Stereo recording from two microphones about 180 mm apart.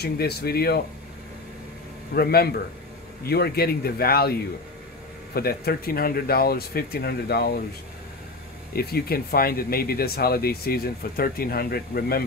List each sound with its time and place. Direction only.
0.0 s speech: 60° left (ahead or behind)
2.1 s speech: 60° left (ahead or behind)
8.7 s speech: 60° left (ahead or behind)